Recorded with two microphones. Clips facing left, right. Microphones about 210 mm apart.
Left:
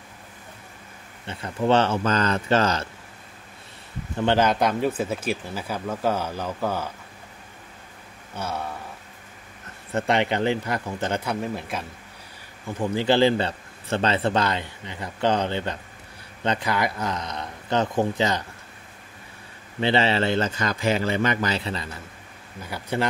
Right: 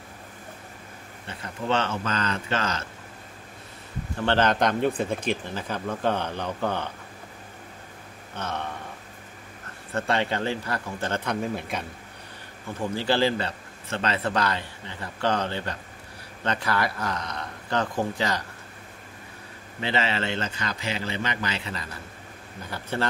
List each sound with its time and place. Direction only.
1.2 s speech: 30° left (ahead or behind)
4.3 s speech: 10° left (ahead or behind)
8.4 s speech: 10° left (ahead or behind)
9.9 s speech: 20° left (ahead or behind); by 11.8 s centre (ahead or behind)
12.9 s a man's voice: 20° left (ahead or behind)
19.8 s speech: 30° left (ahead or behind)
22.7 s speech: 15° left (ahead or behind)